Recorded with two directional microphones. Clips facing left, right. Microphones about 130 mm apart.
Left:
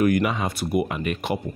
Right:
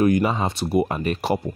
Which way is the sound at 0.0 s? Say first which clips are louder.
Right 2 dB; 30° right (ahead or behind).